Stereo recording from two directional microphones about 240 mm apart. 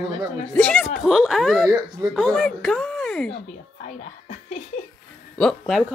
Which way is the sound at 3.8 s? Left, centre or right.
Left.